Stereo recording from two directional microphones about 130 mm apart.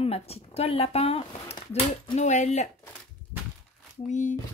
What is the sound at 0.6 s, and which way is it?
A woman's voice, 50° left (ahead or behind).